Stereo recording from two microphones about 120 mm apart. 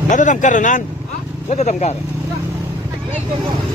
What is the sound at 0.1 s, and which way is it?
Speech, 90° left.